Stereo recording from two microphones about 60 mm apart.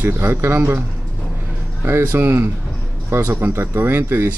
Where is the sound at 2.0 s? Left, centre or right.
Right.